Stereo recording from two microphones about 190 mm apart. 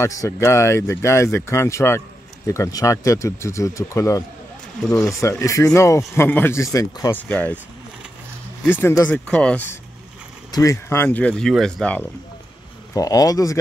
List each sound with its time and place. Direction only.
0.0 s speech: 15° left (ahead or behind)
5.4 s speech: 15° left (ahead or behind)
8.6 s speech: 10° left (ahead or behind)
12.9 s speech: 20° left (ahead or behind)